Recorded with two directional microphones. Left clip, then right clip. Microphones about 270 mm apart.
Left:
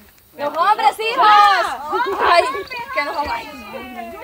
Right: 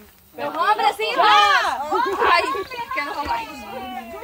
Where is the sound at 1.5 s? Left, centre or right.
Right.